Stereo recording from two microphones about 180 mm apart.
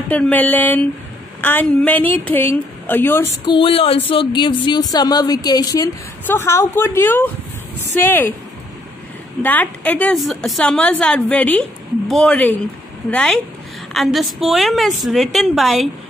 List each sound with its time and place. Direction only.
0.1 s a woman's voice: 10° left (ahead or behind)
3.4 s a woman's voice: 30° left (ahead or behind); by 8.4 s 10° left (ahead or behind)
9.4 s a woman's voice: 10° left (ahead or behind)